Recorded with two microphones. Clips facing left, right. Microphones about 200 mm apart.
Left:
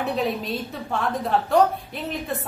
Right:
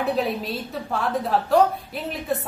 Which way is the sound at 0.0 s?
Centre (ahead or behind).